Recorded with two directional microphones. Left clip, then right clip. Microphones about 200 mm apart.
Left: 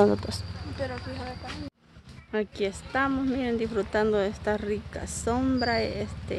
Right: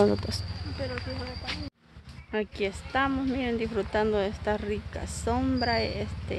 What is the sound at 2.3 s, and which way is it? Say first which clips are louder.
Speech: left 1 dB; 15° left (ahead or behind).